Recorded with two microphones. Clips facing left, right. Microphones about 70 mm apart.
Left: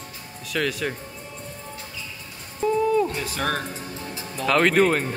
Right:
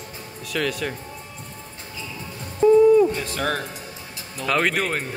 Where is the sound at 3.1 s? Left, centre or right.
Centre.